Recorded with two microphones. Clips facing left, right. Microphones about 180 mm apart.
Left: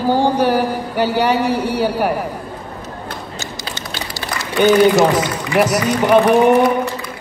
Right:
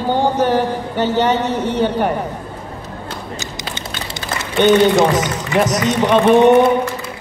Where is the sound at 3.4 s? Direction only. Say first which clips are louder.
Right 1 dB; 20° right (ahead or behind).